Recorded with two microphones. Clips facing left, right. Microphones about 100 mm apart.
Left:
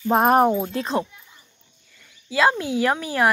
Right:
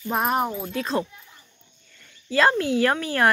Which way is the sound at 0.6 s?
30° left (ahead or behind).